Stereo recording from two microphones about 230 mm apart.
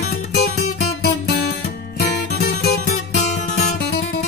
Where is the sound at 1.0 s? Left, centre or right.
Left.